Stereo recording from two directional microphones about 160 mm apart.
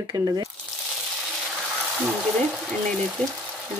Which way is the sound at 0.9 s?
10° right (ahead or behind).